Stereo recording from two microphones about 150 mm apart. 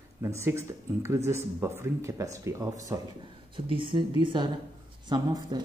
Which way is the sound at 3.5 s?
35° right (ahead or behind).